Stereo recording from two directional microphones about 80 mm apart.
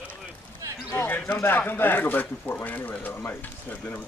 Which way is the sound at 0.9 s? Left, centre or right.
Left.